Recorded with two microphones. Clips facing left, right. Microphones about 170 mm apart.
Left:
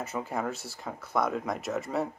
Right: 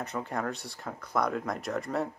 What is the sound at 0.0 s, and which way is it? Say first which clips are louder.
Speech: left 1 dB; 5° left (ahead or behind).